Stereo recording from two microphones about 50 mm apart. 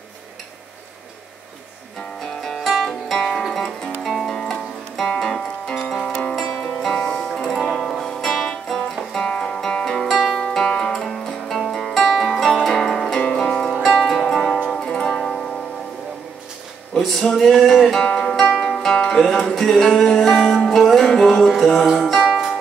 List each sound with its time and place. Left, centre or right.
2.4 s music: centre
7.3 s music: centre
9.2 s music: centre
10.4 s music: centre
13.2 s zither: centre
13.9 s music: centre
14.8 s music: centre
17.4 s music: centre
18.0 s music: centre
18.6 s music: centre
22.2 s music: centre